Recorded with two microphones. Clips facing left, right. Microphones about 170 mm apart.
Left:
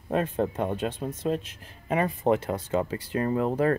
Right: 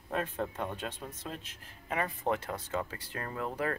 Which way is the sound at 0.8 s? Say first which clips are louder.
Left 10 dB; 20° left (ahead or behind).